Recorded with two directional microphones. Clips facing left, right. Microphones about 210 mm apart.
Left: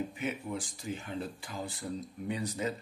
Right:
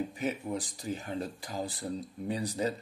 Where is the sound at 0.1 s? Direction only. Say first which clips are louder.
Right 3 dB; 40° right (ahead or behind).